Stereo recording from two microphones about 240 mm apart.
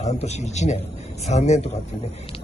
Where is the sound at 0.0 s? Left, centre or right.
Left.